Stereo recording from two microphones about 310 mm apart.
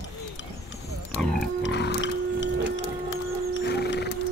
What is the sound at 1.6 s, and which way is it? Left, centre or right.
Pig, left.